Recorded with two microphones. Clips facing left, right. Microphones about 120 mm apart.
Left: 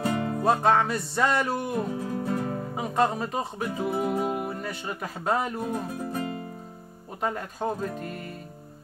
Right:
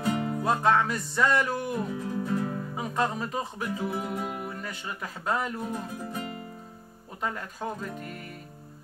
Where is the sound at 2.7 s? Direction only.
25° left (ahead or behind).